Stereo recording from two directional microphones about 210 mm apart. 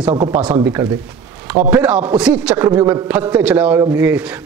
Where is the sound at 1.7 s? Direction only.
5° right (ahead or behind).